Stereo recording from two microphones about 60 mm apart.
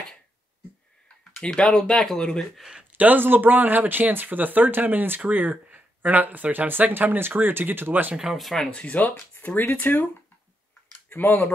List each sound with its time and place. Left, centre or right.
1.4 s speech: centre
3.0 s speech: right
8.2 s speech: centre
8.6 s speech: left
11.1 s speech: left